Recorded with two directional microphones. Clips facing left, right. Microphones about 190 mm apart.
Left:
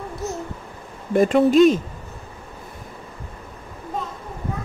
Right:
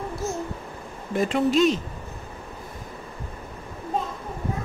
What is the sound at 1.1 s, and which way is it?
Speech, 50° left (ahead or behind).